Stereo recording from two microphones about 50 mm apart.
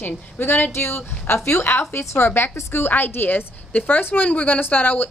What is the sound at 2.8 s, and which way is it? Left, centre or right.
A woman's voice, left.